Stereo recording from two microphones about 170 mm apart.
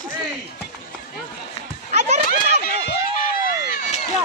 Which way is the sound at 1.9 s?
40° right (ahead or behind).